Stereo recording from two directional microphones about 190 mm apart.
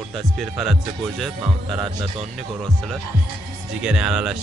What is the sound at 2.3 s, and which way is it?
Speech, centre (ahead or behind).